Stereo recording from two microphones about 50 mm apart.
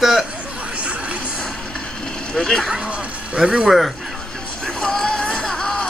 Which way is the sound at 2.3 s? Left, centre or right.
Centre.